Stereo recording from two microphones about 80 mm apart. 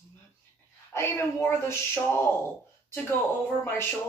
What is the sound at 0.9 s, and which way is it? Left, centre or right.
A man's voice, left.